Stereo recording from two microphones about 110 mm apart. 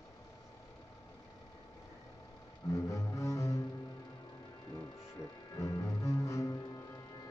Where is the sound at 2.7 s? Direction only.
30° left (ahead or behind).